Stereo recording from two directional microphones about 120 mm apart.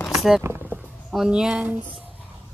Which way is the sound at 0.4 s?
20° right (ahead or behind).